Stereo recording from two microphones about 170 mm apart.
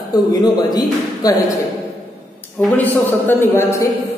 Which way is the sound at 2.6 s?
10° left (ahead or behind).